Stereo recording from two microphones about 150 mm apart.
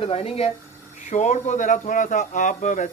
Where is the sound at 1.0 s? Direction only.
55° left (ahead or behind).